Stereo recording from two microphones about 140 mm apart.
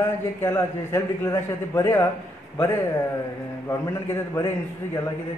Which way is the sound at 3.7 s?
20° left (ahead or behind).